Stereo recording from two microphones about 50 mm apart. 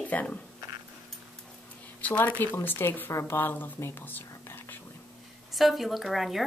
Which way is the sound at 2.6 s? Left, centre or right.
Left.